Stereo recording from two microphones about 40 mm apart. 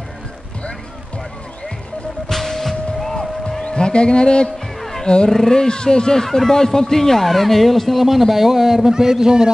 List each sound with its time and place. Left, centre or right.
2.2 s music: centre
3.6 s speech: left
4.7 s music: centre
5.0 s roaring cats: left
5.3 s speech: centre